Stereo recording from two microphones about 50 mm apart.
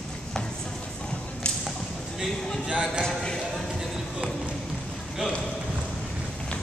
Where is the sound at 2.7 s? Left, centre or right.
Centre.